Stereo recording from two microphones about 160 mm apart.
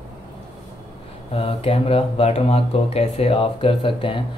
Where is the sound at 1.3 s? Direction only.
35° left (ahead or behind).